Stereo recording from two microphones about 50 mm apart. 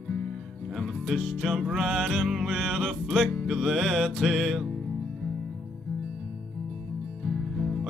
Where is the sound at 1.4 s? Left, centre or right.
Centre.